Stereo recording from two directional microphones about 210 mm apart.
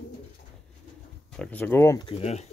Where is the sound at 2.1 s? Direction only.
30° left (ahead or behind).